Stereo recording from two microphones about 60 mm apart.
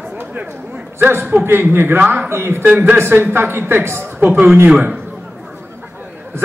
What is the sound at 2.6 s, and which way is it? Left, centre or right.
A man's voice, right.